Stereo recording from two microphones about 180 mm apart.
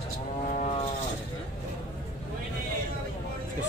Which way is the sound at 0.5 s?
40° left (ahead or behind).